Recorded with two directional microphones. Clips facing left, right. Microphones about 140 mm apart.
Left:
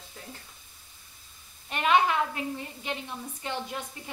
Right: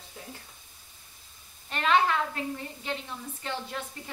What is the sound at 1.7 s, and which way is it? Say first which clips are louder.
Speech: left 1 dB; 15° left (ahead or behind).